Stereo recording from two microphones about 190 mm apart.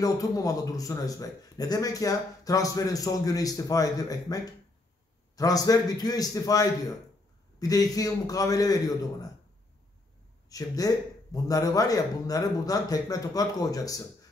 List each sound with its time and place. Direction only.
0.0 s a man's voice: 20° left (ahead or behind)
10.5 s a man's voice: 20° left (ahead or behind)